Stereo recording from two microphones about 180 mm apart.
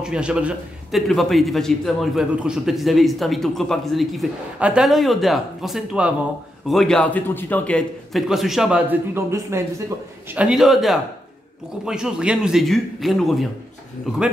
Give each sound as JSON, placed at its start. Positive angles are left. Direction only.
{"t": 0.0, "sound": "a man's voice", "side_deg": -5}